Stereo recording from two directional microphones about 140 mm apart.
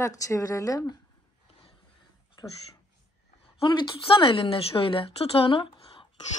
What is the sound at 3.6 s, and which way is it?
A woman's voice, 35° left (ahead or behind).